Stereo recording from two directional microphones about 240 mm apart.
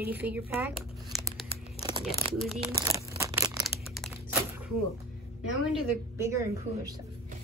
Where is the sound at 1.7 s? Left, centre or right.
Centre.